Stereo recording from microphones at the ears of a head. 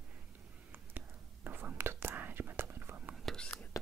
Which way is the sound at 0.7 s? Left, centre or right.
Right.